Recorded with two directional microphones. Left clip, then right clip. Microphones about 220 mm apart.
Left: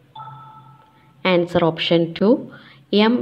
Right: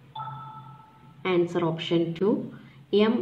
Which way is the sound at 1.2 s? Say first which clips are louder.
Left 8 dB; 40° left (ahead or behind).